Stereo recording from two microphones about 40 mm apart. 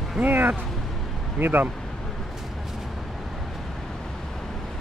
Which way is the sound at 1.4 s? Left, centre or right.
Right.